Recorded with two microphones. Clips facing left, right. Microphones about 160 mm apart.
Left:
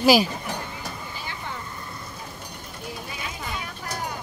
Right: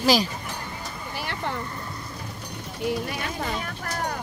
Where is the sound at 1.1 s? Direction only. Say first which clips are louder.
Right 5 dB; 70° right (ahead or behind).